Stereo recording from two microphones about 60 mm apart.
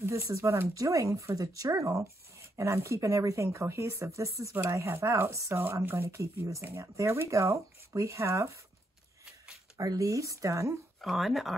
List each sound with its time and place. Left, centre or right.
0.0 s speech: right
2.6 s speech: right
4.8 s speech: right
5.6 s speech: right
6.0 s speech: right
9.8 s speech: right
11.0 s speech: centre